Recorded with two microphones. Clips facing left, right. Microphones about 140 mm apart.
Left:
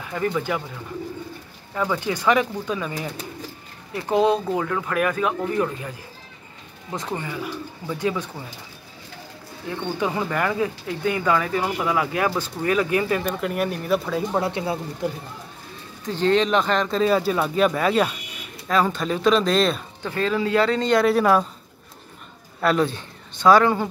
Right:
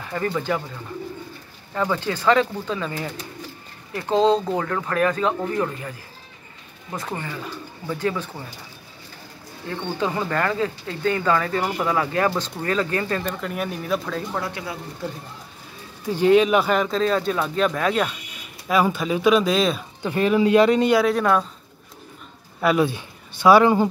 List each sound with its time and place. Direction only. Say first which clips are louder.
0.1 s speech: left 1 dB; 10° left (ahead or behind)
1.8 s speech: even; 10° left (ahead or behind)
6.9 s speech: left 1 dB; 15° left (ahead or behind)
9.7 s speech: even; 10° left (ahead or behind)
14.3 s speech: left 5 dB; 25° left (ahead or behind)
15.0 s speech: left 4 dB; 15° left (ahead or behind)
16.1 s speech: right 3 dB; 10° right (ahead or behind)
16.9 s speech: left 1 dB; 5° left (ahead or behind)
18.7 s speech: right 1 dB; 10° right (ahead or behind)
20.0 s speech: right 6 dB; 15° right (ahead or behind)
21.0 s speech: left 2 dB; 5° left (ahead or behind)
22.6 s speech: right 1 dB; 10° right (ahead or behind)